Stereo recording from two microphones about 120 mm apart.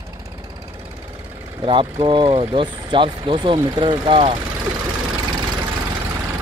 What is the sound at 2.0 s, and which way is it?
Speech, 45° right (ahead or behind).